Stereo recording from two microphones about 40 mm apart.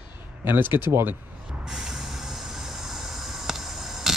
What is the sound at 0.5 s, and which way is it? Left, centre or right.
Speech, right.